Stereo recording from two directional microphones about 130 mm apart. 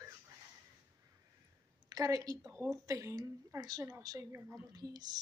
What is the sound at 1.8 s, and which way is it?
A woman's voice, 25° right (ahead or behind).